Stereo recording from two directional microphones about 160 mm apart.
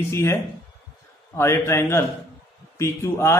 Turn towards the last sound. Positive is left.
turn(degrees=20)  # may be behind; listen again after turning